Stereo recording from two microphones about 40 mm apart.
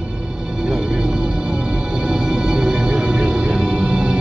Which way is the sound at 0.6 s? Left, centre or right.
Centre.